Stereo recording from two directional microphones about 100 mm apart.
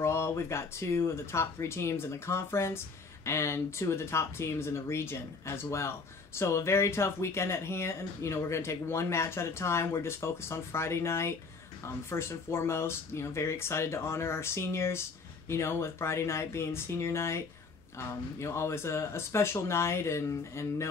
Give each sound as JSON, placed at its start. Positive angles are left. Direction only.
{"t": 0.0, "sound": "speech", "side_deg": 25}